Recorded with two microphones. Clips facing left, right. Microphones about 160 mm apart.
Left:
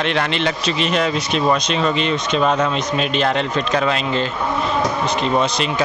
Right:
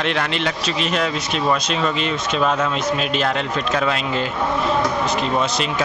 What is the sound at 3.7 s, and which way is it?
Speech, centre (ahead or behind).